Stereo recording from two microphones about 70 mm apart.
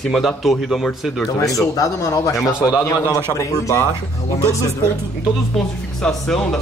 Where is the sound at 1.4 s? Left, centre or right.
Left.